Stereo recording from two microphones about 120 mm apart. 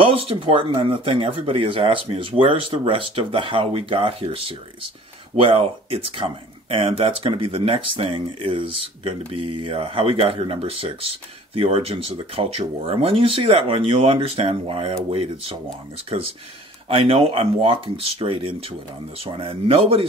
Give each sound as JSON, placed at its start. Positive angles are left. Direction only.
{"t": 0.0, "sound": "speech", "side_deg": -50}
{"t": 16.9, "sound": "speech", "side_deg": -50}